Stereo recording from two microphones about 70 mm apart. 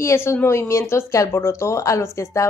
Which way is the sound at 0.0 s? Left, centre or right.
Left.